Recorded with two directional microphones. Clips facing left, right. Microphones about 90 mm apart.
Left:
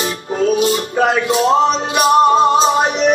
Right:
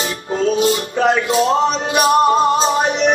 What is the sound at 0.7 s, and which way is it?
Music, 35° left (ahead or behind).